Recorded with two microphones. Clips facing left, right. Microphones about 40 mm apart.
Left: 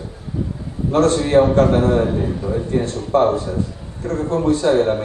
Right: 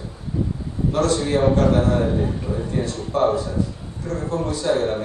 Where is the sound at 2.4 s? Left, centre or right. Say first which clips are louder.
Left 4 dB; left.